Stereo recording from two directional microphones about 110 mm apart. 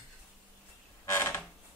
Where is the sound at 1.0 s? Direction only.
25° left (ahead or behind).